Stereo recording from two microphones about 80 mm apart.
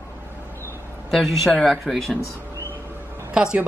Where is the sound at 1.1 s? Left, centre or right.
Centre.